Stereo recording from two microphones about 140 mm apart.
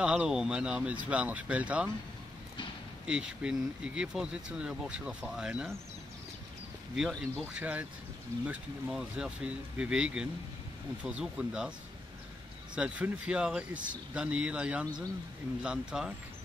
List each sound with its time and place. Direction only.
0.0 s speech: 5° right (ahead or behind)
3.1 s speech: 5° right (ahead or behind)
7.0 s speech: 5° left (ahead or behind)
7.5 s speech: 10° right (ahead or behind)
12.7 s speech: 10° right (ahead or behind)